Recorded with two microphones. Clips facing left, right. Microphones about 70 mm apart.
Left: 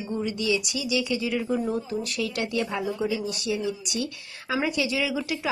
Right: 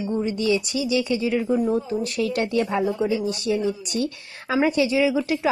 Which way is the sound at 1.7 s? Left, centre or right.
Right.